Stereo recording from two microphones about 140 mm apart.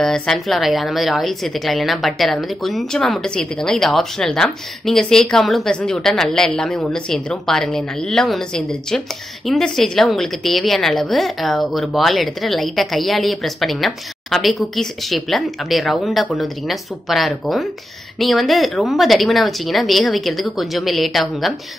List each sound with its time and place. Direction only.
0.0 s a woman's voice: 5° left (ahead or behind)